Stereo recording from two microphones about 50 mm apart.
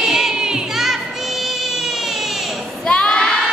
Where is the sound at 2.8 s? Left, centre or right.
Centre.